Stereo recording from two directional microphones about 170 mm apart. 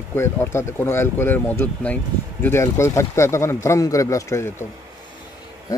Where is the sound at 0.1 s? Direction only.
15° left (ahead or behind).